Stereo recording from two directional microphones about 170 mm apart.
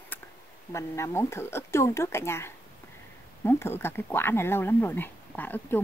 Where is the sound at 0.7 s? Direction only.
15° left (ahead or behind).